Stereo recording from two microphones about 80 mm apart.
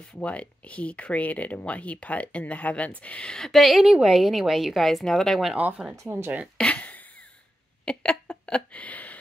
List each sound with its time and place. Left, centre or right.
0.2 s a woman's voice: centre
6.0 s speech: right
6.6 s a sound: centre